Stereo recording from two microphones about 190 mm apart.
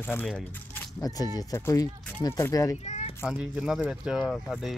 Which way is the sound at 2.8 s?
35° left (ahead or behind).